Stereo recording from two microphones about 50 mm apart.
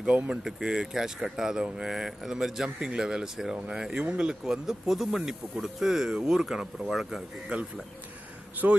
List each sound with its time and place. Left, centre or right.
0.0 s speech: centre
8.6 s speech: right